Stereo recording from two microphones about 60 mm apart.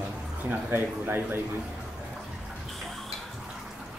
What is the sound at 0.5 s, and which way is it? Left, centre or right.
Speech, right.